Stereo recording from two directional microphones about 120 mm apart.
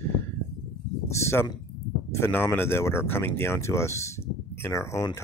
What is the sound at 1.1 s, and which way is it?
Speech, 20° left (ahead or behind).